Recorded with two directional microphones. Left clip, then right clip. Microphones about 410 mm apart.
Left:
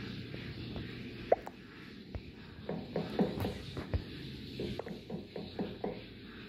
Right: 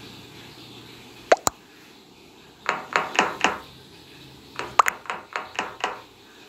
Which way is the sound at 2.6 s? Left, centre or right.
Right.